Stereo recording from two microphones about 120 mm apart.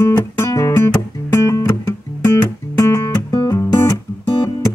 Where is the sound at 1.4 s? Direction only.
25° left (ahead or behind).